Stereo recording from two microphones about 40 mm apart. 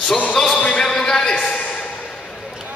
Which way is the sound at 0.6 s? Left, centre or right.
Left.